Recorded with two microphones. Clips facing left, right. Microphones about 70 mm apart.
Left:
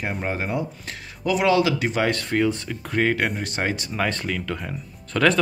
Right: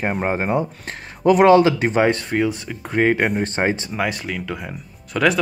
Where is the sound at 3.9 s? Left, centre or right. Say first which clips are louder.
Right 1 dB; centre.